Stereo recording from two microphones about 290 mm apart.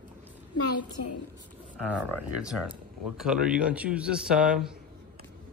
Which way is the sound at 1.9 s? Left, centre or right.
Centre.